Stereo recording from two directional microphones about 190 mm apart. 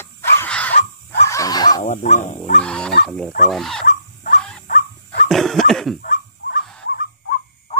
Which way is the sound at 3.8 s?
40° left (ahead or behind).